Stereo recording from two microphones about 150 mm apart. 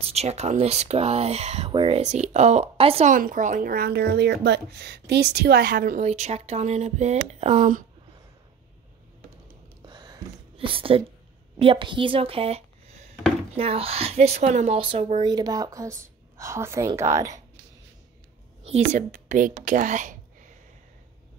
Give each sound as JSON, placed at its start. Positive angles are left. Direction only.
{"t": 0.1, "sound": "speech", "side_deg": -45}
{"t": 1.7, "sound": "speech", "side_deg": -35}
{"t": 2.0, "sound": "speech", "side_deg": -50}
{"t": 3.1, "sound": "speech", "side_deg": -60}
{"t": 6.0, "sound": "speech", "side_deg": -45}
{"t": 9.8, "sound": "a sound", "side_deg": -30}
{"t": 11.5, "sound": "speech", "side_deg": -35}
{"t": 18.6, "sound": "speech", "side_deg": -45}